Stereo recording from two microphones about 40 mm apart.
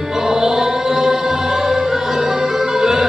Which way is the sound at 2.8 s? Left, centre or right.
Centre.